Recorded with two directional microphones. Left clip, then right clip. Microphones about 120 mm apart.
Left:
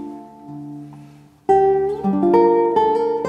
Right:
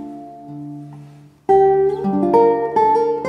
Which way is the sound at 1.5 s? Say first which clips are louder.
Right 2 dB; 10° left (ahead or behind).